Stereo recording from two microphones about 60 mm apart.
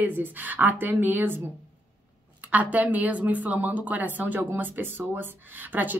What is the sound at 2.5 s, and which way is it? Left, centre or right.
A woman's voice, right.